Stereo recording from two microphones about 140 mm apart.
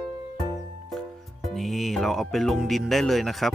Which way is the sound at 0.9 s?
Centre (ahead or behind).